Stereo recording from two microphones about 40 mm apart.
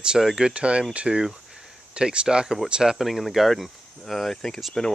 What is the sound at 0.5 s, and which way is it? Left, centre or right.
Speech, right.